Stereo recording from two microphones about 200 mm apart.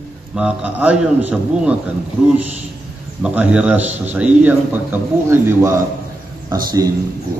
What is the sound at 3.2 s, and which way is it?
A man's voice, 5° right (ahead or behind).